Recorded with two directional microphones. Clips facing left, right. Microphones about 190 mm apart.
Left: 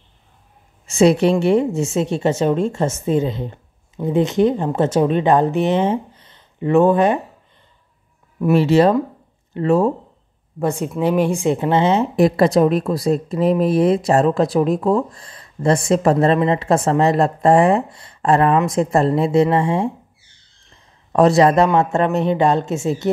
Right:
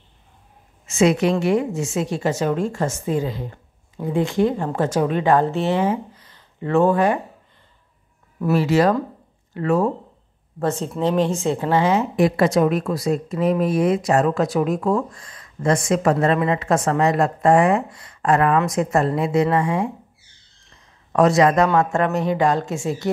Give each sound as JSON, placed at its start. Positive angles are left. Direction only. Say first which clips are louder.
{"t": 0.8, "sound": "a woman's voice", "louder": "left 4 dB", "side_deg": 30}
{"t": 8.5, "sound": "a woman's voice", "louder": "left 4 dB", "side_deg": 25}
{"t": 10.6, "sound": "a woman's voice", "louder": "left 2 dB", "side_deg": 15}
{"t": 12.2, "sound": "a woman's voice", "louder": "left 4 dB", "side_deg": 35}
{"t": 21.1, "sound": "a woman's voice", "louder": "left 3 dB", "side_deg": 35}